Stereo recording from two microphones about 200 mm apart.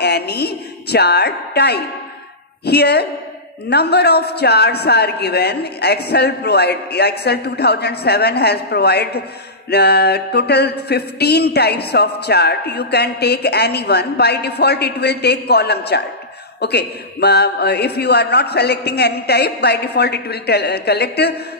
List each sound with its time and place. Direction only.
0.0 s a woman's voice: 55° left (ahead or behind)
9.7 s a sound: 55° left (ahead or behind)
16.6 s a man's voice: 55° left (ahead or behind)